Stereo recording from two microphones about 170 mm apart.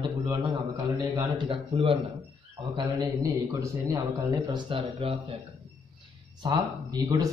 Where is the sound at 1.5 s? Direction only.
30° right (ahead or behind).